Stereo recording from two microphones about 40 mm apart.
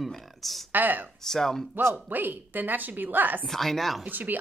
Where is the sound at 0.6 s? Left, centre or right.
Right.